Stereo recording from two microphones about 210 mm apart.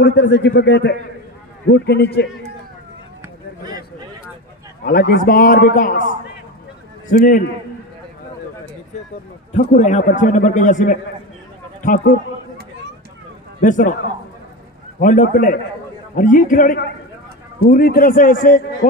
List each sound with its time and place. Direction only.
0.0 s a man's voice: 55° left (ahead or behind)
4.8 s a man's voice: 45° left (ahead or behind)
7.1 s a man's voice: 40° left (ahead or behind)
9.5 s a man's voice: 35° left (ahead or behind)
13.6 s a man's voice: 40° left (ahead or behind)
15.0 s a man's voice: 40° left (ahead or behind)